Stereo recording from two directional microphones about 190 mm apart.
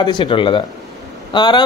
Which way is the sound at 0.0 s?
25° left (ahead or behind).